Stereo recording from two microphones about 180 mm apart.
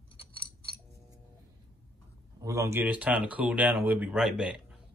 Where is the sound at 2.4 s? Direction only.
15° right (ahead or behind).